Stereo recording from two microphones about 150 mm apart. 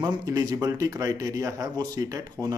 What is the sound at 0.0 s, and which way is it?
Speech, 25° right (ahead or behind).